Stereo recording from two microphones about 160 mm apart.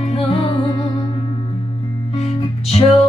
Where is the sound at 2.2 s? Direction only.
40° left (ahead or behind).